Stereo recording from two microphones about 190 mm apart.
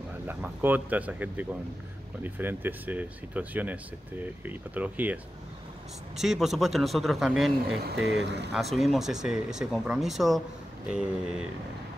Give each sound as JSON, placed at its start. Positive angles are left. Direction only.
{"t": 0.3, "sound": "speech", "side_deg": -10}
{"t": 8.1, "sound": "speech", "side_deg": -65}
{"t": 8.5, "sound": "speech", "side_deg": 0}